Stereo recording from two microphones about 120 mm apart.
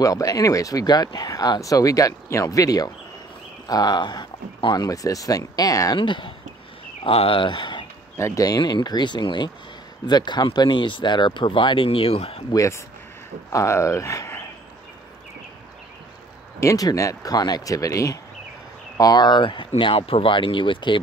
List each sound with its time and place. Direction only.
0.0 s speech: 30° left (ahead or behind)
4.8 s speech: 30° left (ahead or behind)
5.9 s speech: 40° left (ahead or behind)
8.2 s speech: 30° left (ahead or behind); by 12.4 s 55° left (ahead or behind)
12.5 s speech: 25° left (ahead or behind)
16.5 s speech: 25° left (ahead or behind); by 21.0 s 45° left (ahead or behind)